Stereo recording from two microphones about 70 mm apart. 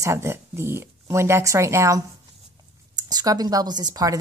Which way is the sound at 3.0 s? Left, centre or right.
Right.